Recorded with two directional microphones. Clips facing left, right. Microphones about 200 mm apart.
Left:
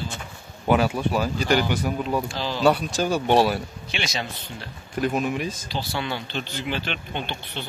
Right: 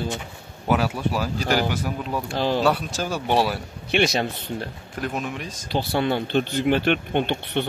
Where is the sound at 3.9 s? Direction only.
60° right (ahead or behind).